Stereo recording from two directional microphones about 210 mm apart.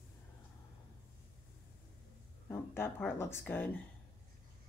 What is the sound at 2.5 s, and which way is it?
A woman's voice, 10° left (ahead or behind).